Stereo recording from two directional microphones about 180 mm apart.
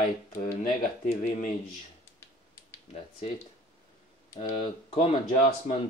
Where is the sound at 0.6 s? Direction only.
45° left (ahead or behind).